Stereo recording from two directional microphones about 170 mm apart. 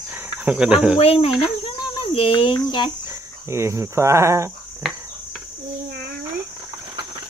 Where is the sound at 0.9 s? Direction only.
35° left (ahead or behind).